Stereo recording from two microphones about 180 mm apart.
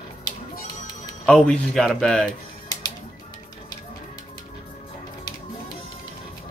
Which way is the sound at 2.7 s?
20° left (ahead or behind).